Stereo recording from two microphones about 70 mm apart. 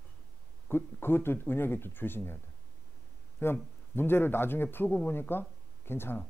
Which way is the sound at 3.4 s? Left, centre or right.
Left.